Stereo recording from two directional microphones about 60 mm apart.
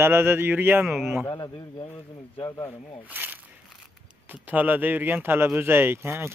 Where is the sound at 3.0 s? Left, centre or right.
Right.